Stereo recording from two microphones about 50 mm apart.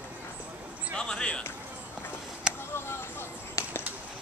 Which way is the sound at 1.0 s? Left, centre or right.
Centre.